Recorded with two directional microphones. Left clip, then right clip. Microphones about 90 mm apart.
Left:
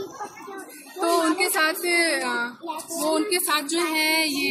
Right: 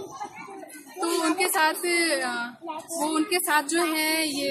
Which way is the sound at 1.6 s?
50° right (ahead or behind).